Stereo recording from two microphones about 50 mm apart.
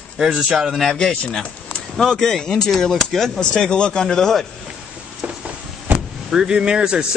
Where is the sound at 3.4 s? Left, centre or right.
Centre.